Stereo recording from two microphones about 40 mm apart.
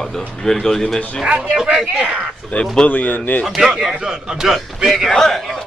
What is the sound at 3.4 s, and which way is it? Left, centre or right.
Speech, centre.